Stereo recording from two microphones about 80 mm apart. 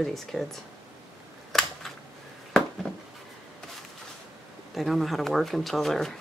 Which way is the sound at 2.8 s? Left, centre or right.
Centre.